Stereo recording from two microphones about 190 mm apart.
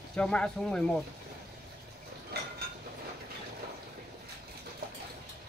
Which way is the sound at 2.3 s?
60° right (ahead or behind).